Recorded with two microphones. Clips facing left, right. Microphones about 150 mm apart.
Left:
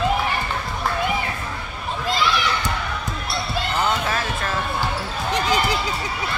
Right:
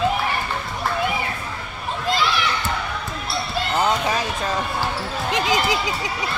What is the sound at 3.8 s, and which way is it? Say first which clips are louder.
Basketball bounce: right 2 dB; 15° right (ahead or behind).